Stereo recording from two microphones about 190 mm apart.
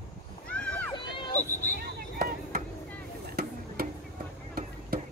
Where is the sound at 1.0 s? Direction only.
25° left (ahead or behind).